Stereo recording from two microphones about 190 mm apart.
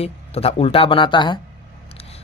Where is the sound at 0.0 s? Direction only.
30° left (ahead or behind).